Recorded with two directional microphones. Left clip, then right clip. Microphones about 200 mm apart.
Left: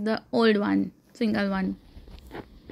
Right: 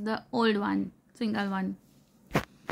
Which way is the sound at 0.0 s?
20° left (ahead or behind).